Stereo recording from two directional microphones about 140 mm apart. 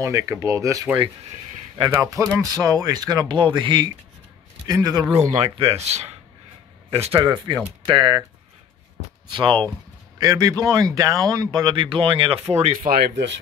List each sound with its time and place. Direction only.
0.0 s speech: 20° right (ahead or behind)
4.6 s speech: 25° right (ahead or behind)
5.1 s speech: 55° right (ahead or behind)
7.2 s speech: 30° right (ahead or behind)
9.3 s speech: 35° right (ahead or behind)
12.8 s speech: 90° right